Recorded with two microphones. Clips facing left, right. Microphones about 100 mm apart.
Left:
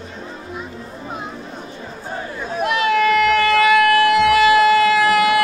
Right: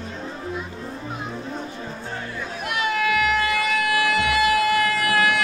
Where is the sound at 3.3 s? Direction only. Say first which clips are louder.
Left 8 dB; 90° left.